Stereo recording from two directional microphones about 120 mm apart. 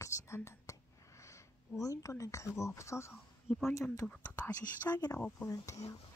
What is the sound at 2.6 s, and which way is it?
Speech, 25° left (ahead or behind).